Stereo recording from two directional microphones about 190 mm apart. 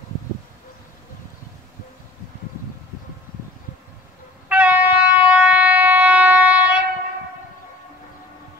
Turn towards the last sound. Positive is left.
turn(degrees=-5)  # may be behind; listen again after turning